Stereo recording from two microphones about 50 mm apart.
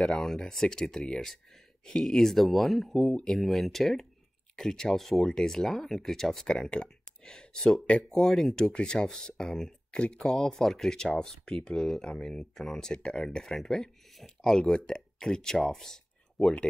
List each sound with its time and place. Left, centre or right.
0.0 s speech: centre
6.4 s speech: centre